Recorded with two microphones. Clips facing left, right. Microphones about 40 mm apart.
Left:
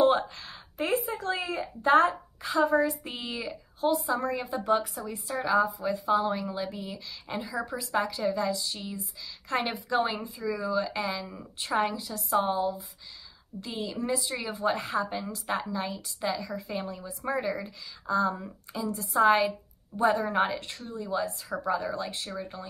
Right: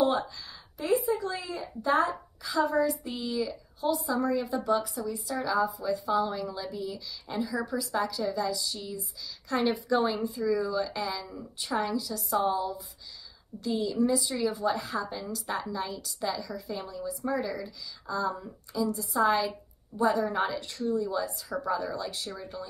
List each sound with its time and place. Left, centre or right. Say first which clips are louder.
0.0 s a woman's voice: left 3 dB; left
13.7 s a woman's voice: right 4 dB; left